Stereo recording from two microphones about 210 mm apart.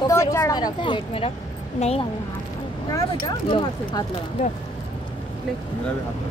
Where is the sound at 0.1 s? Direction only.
15° left (ahead or behind).